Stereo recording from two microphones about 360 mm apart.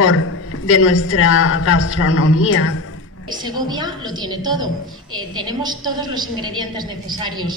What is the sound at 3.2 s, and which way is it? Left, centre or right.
A woman's voice, centre.